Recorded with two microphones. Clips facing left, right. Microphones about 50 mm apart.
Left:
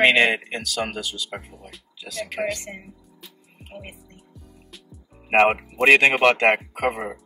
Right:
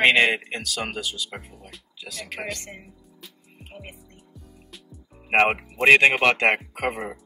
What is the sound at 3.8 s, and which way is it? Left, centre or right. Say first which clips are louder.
Music: left 1 dB; centre.